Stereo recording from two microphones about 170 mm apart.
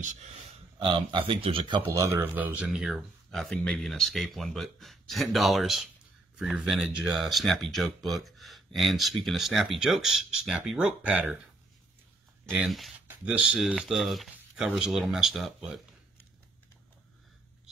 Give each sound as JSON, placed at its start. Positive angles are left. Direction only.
{"t": 0.0, "sound": "speech", "side_deg": -45}
{"t": 0.7, "sound": "speech", "side_deg": -30}
{"t": 1.9, "sound": "speech", "side_deg": -20}
{"t": 12.4, "sound": "speech", "side_deg": 0}